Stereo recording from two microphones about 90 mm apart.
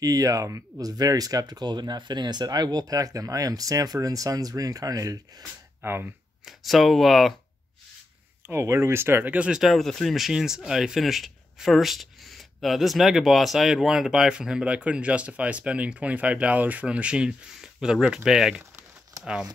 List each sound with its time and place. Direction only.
0.0 s speech: 40° right (ahead or behind)
5.8 s speech: 25° right (ahead or behind)
6.4 s speech: centre (ahead or behind)
8.5 s speech: 30° right (ahead or behind)
9.6 s speech: centre (ahead or behind)